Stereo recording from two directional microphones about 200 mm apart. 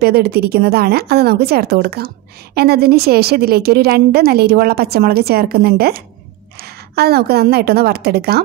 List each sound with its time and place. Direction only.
0.0 s speech: 50° right (ahead or behind)